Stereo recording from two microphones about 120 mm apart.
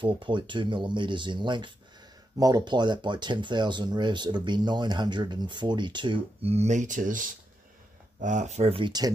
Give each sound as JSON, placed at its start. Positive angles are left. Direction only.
{"t": 0.0, "sound": "speech", "side_deg": -45}
{"t": 6.4, "sound": "speech", "side_deg": -65}
{"t": 8.7, "sound": "speech", "side_deg": -40}